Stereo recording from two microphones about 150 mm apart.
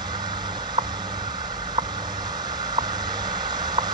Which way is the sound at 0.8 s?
30° right (ahead or behind).